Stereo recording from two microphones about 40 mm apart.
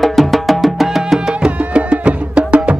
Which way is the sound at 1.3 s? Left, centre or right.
Right.